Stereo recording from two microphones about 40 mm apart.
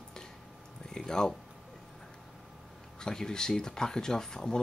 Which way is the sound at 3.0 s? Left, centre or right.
Centre.